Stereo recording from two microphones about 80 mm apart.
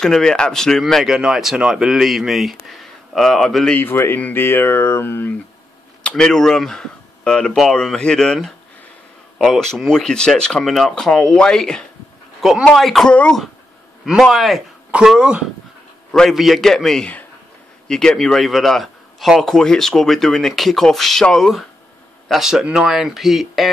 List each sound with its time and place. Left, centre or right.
0.0 s speech: centre
1.0 s a man's voice: centre
3.7 s speech: left
6.0 s a man's voice: centre
13.1 s speech: centre
14.2 s a man's voice: centre
16.1 s a man's voice: centre